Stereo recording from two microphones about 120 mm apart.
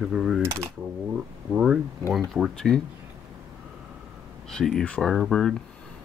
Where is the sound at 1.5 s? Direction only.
5° right (ahead or behind).